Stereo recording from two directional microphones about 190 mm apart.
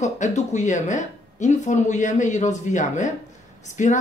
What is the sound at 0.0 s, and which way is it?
Speech, 40° left (ahead or behind).